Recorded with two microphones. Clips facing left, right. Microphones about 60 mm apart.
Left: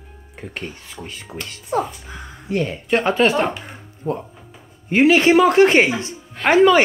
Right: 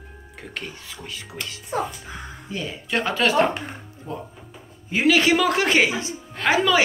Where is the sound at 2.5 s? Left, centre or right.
Left.